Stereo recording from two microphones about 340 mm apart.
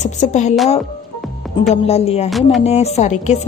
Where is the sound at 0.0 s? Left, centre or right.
Centre.